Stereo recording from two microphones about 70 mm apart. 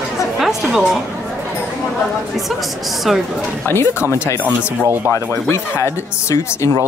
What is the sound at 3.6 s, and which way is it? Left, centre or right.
Speech, left.